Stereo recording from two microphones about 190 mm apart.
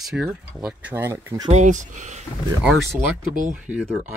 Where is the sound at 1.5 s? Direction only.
40° right (ahead or behind).